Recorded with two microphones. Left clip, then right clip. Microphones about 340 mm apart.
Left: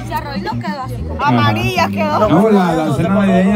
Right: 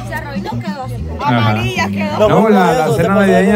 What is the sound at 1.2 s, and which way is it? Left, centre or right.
Speech, centre.